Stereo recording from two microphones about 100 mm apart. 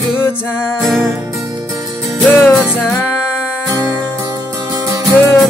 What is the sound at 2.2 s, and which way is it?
Music, 15° left (ahead or behind).